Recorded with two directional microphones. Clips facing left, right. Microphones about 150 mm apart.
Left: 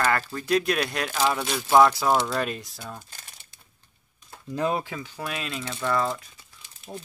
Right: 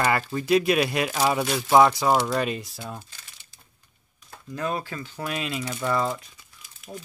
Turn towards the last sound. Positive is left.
turn(degrees=30)  # may be behind; listen again after turning